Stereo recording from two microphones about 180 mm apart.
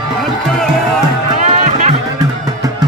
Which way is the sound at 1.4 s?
40° right (ahead or behind).